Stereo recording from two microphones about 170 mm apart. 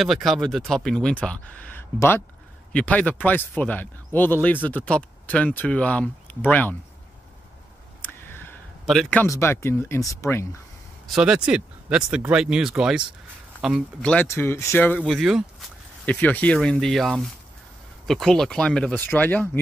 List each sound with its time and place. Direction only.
0.0 s speech: centre (ahead or behind)
8.0 s a sound: 10° left (ahead or behind)
8.8 s speech: centre (ahead or behind)
9.2 s speech: 15° left (ahead or behind)
11.1 s speech: 5° right (ahead or behind)
14.1 s speech: 15° left (ahead or behind); by 15.7 s centre (ahead or behind)
16.1 s speech: 10° left (ahead or behind)